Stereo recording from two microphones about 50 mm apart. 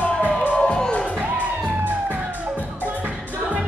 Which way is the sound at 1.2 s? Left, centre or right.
Right.